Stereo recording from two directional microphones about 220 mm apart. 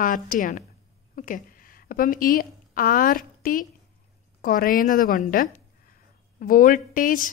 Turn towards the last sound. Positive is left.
turn(degrees=40)  # may be behind; listen again after turning